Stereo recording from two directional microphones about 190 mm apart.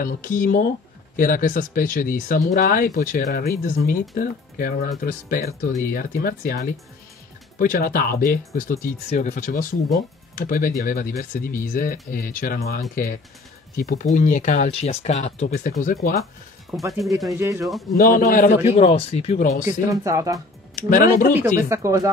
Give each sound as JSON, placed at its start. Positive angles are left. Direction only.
{"t": 0.0, "sound": "speech", "side_deg": 45}
{"t": 7.5, "sound": "speech", "side_deg": 45}
{"t": 17.3, "sound": "speech", "side_deg": -15}
{"t": 17.9, "sound": "speech", "side_deg": 45}
{"t": 18.8, "sound": "speech", "side_deg": 35}
{"t": 19.6, "sound": "speech", "side_deg": -15}
{"t": 20.7, "sound": "speech", "side_deg": 45}
{"t": 21.5, "sound": "speech", "side_deg": -15}